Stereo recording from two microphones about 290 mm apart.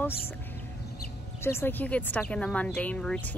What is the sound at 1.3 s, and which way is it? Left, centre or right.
Speech, centre.